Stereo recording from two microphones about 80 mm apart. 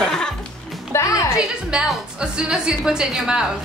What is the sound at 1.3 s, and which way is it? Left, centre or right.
A woman's voice, centre.